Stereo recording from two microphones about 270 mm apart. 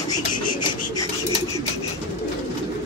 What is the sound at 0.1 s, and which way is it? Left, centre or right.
Rub, centre.